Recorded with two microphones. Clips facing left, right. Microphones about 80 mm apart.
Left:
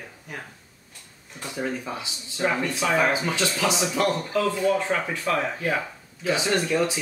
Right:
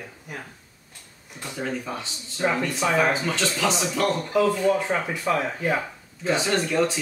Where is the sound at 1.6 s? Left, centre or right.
Centre.